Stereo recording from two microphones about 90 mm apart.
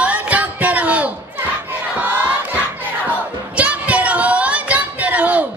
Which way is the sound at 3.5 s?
15° right (ahead or behind).